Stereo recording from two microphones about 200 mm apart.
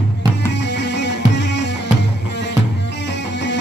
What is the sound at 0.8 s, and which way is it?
Music, 60° left (ahead or behind).